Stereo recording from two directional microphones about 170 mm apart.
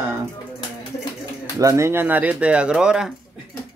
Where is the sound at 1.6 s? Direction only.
20° right (ahead or behind).